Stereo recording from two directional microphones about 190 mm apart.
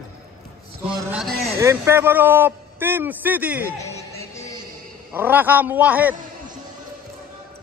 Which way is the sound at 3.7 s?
15° left (ahead or behind).